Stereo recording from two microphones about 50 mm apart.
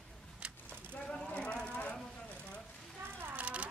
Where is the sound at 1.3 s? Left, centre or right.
Left.